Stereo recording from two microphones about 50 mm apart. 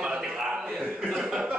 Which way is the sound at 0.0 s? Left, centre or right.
Centre.